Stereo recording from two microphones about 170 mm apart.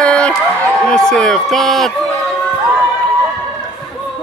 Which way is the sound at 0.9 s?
5° left (ahead or behind).